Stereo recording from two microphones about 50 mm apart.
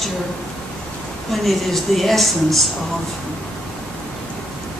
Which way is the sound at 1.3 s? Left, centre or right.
Centre.